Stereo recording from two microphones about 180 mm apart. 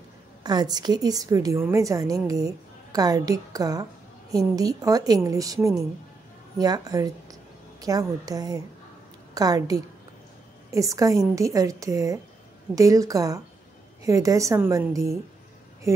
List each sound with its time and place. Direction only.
0.4 s a woman's voice: 25° right (ahead or behind)